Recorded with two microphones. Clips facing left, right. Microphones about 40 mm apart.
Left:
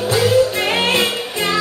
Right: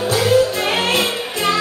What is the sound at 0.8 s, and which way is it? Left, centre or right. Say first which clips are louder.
Music: left 1 dB; left.